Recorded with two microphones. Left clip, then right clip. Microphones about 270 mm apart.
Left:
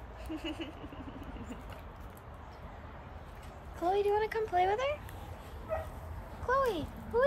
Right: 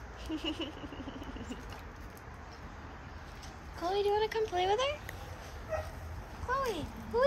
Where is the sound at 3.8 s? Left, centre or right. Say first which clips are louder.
Left 1 dB; centre.